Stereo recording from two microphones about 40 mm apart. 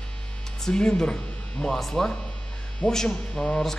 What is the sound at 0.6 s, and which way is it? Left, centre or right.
Hum, centre.